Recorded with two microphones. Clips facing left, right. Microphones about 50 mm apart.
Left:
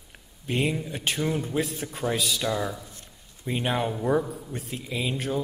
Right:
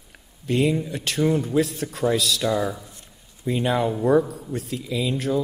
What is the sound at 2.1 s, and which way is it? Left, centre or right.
Speech, centre.